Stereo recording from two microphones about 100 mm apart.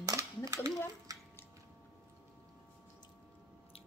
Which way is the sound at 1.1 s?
35° right (ahead or behind).